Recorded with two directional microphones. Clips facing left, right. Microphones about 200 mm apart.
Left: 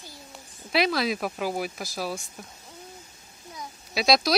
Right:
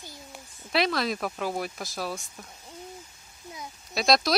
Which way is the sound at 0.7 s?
5° left (ahead or behind).